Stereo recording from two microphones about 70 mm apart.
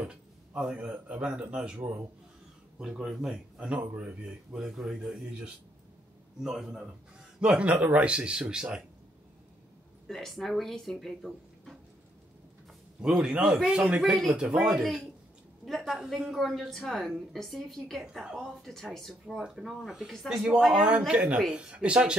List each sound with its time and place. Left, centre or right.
0.6 s speech: centre
0.8 s speech: centre
3.0 s speech: centre
4.6 s a woman's voice: centre
6.4 s speech: centre
10.0 s a woman's voice: centre
13.4 s a woman's voice: centre
18.0 s a woman's voice: centre